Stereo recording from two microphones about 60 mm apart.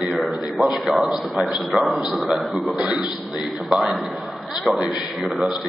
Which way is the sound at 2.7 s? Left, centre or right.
Centre.